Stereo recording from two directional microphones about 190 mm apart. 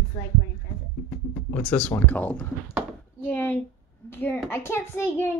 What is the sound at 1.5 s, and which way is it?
Speech, 5° left (ahead or behind).